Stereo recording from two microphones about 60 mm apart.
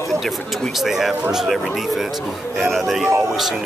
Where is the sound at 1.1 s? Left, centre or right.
Centre.